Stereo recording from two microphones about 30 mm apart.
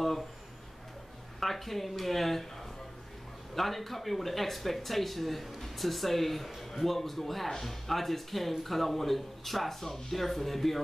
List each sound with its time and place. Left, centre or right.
1.4 s speech: centre
3.5 s speech: centre